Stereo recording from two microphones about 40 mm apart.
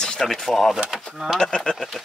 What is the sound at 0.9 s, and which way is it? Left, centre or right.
Speech, centre.